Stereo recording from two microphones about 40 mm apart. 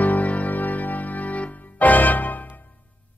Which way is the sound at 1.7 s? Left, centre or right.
Left.